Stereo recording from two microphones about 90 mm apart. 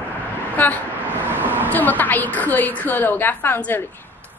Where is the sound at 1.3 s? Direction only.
25° right (ahead or behind).